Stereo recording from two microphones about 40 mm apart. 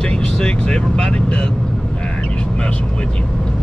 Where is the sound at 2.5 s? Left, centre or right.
Left.